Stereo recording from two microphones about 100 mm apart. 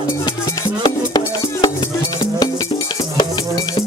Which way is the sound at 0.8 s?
45° left (ahead or behind).